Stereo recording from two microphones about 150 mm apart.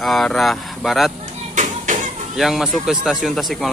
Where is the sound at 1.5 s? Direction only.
55° right (ahead or behind).